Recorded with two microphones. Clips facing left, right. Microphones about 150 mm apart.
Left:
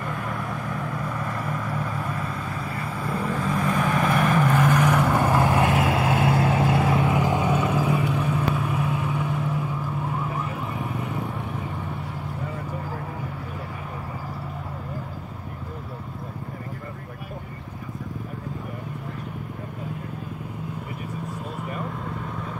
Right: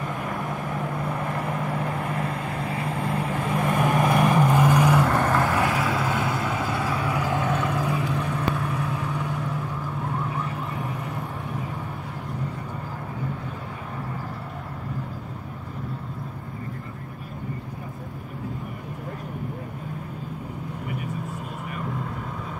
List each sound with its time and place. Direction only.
0.1 s vehicle: 20° right (ahead or behind)
1.8 s vehicle: 55° right (ahead or behind)
3.2 s vehicle: 10° right (ahead or behind)
5.0 s vehicle: 5° left (ahead or behind)
5.3 s vehicle: 15° left (ahead or behind)
5.7 s vehicle: 50° left (ahead or behind)
6.5 s vehicle: 30° left (ahead or behind); by 11.1 s centre (ahead or behind)